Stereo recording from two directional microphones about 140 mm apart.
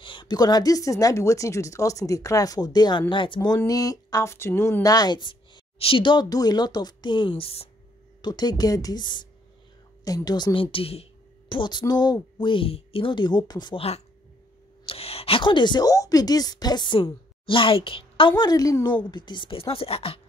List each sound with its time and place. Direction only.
0.0 s speech: 35° left (ahead or behind)
3.3 s speech: 25° left (ahead or behind); by 7.6 s 40° left (ahead or behind)
8.2 s a woman's voice: 30° left (ahead or behind)
14.9 s a woman's voice: 45° left (ahead or behind)
18.4 s speech: 25° left (ahead or behind); by 20.2 s 45° left (ahead or behind)